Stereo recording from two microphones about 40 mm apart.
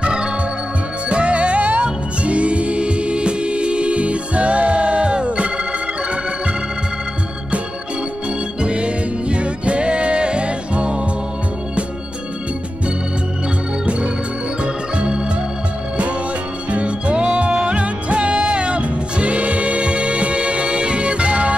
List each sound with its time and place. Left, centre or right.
0.0 s organ: right
1.0 s music: right
8.5 s music: right
13.8 s music: right
14.6 s organ: right
16.7 s music: right